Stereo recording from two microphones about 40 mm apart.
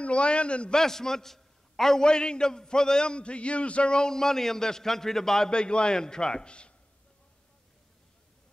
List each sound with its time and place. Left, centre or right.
0.0 s a man's voice: left
0.7 s a man's voice: centre
5.5 s a man's voice: left